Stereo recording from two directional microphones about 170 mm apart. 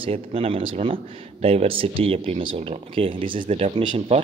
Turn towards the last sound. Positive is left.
turn(degrees=-35)  # may be behind; listen again after turning